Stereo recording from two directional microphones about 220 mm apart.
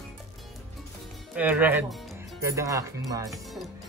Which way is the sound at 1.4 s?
5° right (ahead or behind).